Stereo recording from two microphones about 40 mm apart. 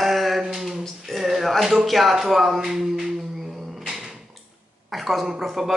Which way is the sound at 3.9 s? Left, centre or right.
Centre.